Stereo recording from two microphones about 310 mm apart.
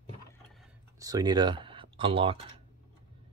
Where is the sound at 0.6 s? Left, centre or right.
Centre.